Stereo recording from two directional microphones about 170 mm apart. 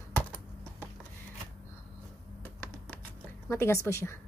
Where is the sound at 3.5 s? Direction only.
15° left (ahead or behind).